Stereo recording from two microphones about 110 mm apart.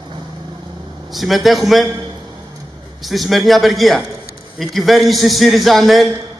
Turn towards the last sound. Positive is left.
turn(degrees=0)  # may be behind; listen again after turning